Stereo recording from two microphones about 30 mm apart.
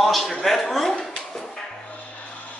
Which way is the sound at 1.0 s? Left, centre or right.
Centre.